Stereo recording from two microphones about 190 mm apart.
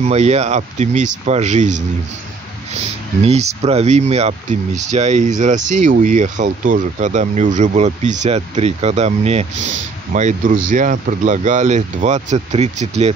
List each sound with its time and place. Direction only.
0.0 s speech: 35° right (ahead or behind)
3.2 s speech: 35° right (ahead or behind)